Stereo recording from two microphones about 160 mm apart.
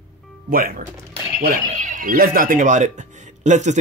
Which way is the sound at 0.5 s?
60° right (ahead or behind).